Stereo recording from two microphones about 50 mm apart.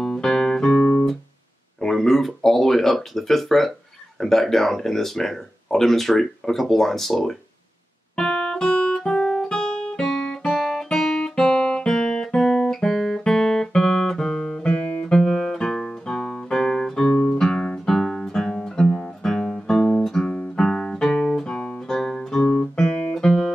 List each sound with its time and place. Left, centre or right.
0.0 s music: centre
0.7 s music: left
1.8 s speech: centre
8.2 s music: centre
8.9 s guitar: centre
10.5 s guitar: centre
17.8 s music: centre
22.6 s guitar: centre
23.1 s music: centre